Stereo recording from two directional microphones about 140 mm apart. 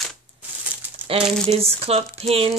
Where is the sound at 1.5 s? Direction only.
45° right (ahead or behind).